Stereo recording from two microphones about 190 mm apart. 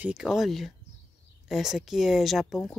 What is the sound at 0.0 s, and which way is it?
Speech, 5° right (ahead or behind).